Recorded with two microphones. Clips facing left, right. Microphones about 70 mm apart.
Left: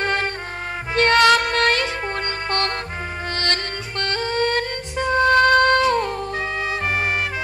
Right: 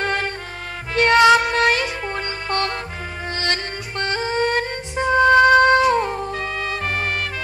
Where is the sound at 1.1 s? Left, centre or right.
Centre.